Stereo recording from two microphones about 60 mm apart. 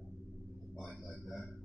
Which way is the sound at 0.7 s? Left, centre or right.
Centre.